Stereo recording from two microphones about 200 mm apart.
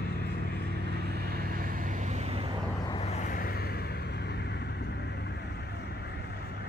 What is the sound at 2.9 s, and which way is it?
Vehicle, 35° left (ahead or behind).